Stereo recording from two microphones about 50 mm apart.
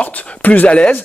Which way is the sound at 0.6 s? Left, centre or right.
Left.